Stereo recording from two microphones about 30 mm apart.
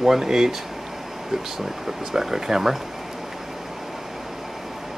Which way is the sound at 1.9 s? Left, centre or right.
Centre.